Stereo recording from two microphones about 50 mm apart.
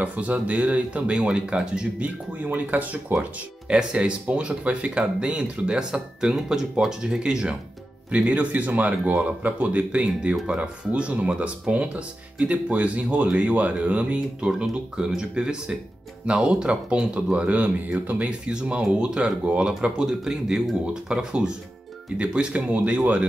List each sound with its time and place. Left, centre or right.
0.0 s speech: right
2.3 s speech: right
3.6 s speech: centre
14.6 s speech: centre; by 18.3 s right
18.5 s speech: centre